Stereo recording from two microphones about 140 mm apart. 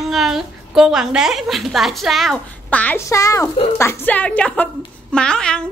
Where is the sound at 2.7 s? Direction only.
10° left (ahead or behind).